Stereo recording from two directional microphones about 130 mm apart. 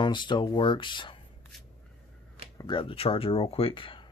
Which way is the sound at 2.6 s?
40° left (ahead or behind).